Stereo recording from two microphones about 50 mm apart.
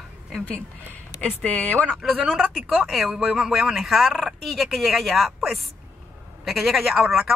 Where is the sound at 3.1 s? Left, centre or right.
Centre.